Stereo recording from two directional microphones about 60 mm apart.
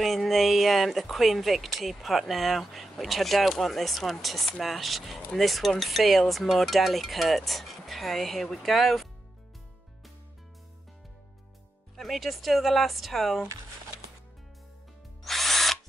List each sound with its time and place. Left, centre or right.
0.0 s speech: centre
12.0 s speech: centre
15.2 s drill: centre